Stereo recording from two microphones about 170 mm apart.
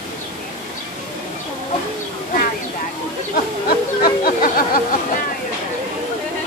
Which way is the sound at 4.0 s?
60° left (ahead or behind).